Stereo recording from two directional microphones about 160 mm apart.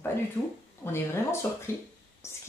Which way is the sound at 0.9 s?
15° left (ahead or behind).